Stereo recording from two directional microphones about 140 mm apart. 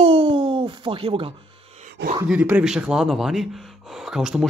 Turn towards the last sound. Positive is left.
turn(degrees=-5)  # may be behind; listen again after turning